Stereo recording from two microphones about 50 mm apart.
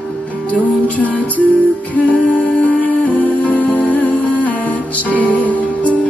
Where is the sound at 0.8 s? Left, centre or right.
Left.